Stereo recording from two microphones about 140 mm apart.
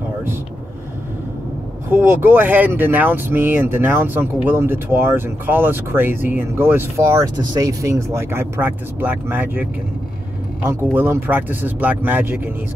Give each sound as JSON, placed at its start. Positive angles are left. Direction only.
{"t": 1.9, "sound": "speech", "side_deg": -15}